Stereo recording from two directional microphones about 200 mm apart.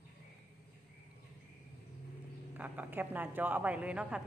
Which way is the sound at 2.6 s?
10° right (ahead or behind).